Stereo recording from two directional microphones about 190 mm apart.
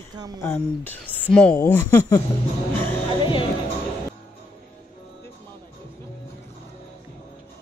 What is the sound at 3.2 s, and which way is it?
Speech, 25° left (ahead or behind).